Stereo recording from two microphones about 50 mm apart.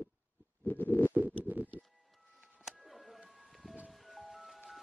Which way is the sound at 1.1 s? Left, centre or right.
Right.